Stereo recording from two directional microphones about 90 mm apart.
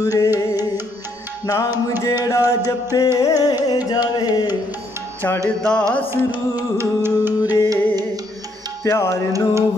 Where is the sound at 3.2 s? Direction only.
45° left (ahead or behind).